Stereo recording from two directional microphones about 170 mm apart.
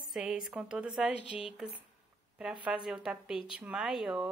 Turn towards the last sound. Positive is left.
turn(degrees=-5)  # may be behind; listen again after turning